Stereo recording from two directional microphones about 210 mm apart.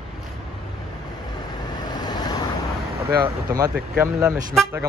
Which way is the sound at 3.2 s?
15° right (ahead or behind).